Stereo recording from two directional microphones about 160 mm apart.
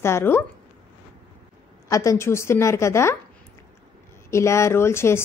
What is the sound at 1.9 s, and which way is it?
Speech, 20° left (ahead or behind).